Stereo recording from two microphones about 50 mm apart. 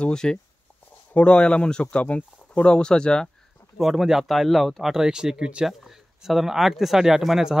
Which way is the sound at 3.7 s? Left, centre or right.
Centre.